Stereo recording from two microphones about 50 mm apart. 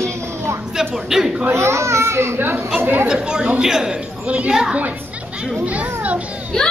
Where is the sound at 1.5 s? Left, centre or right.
Right.